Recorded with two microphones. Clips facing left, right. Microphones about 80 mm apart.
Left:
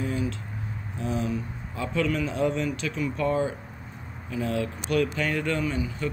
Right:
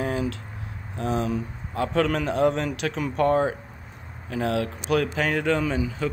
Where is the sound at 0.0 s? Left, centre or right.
Right.